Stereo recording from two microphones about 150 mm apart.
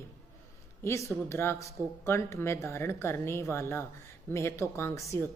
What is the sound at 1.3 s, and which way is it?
A woman's voice, 15° left (ahead or behind).